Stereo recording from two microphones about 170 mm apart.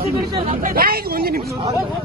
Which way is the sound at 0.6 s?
60° right (ahead or behind).